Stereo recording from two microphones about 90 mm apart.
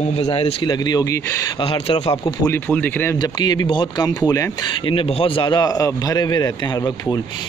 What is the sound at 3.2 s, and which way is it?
Speech, 50° left (ahead or behind).